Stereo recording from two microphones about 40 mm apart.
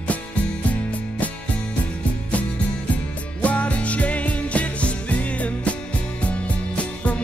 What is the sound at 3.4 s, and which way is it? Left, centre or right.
Music, left.